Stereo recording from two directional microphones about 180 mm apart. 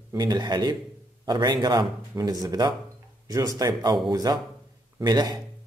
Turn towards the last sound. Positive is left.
turn(degrees=-20)  # may be behind; listen again after turning